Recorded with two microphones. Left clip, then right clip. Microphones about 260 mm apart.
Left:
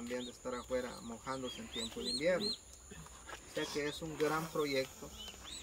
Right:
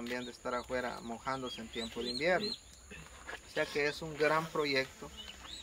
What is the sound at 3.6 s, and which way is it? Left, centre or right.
Speech, centre.